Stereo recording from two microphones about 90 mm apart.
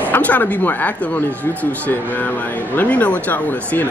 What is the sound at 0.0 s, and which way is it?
Speech, 20° left (ahead or behind).